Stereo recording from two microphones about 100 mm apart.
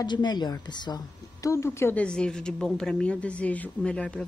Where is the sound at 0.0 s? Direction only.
45° left (ahead or behind).